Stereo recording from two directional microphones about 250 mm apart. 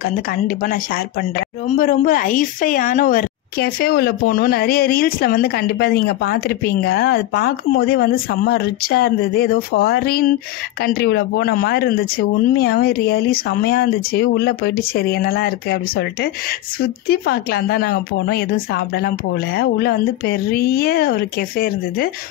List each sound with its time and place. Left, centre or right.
0.0 s speech: left